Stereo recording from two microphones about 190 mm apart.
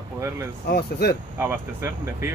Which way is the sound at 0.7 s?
55° left (ahead or behind).